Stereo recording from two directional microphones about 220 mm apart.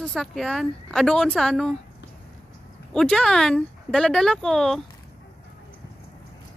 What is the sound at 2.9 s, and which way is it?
Speech, 5° left (ahead or behind).